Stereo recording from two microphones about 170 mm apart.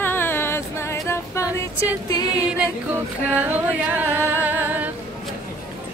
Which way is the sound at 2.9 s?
10° right (ahead or behind).